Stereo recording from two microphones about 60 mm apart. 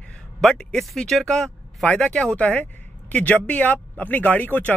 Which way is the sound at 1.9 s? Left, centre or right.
Left.